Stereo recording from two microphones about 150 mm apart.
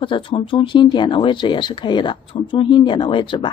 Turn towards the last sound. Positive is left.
turn(degrees=30)  # may be behind; listen again after turning